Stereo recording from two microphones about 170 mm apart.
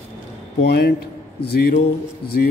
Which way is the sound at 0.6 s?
70° left (ahead or behind).